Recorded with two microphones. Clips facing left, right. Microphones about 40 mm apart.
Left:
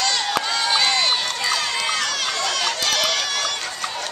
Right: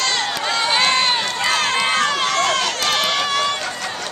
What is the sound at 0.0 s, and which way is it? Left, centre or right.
Run, right.